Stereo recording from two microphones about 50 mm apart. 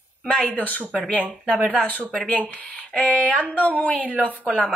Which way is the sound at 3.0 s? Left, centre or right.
Left.